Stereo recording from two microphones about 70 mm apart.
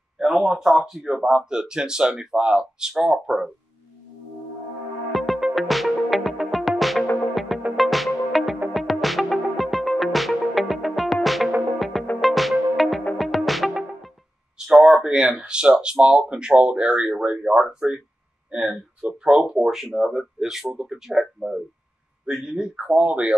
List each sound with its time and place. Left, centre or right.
0.2 s speech: centre
5.1 s music: centre
14.6 s a sound: centre
15.0 s speech: centre
19.6 s speech: centre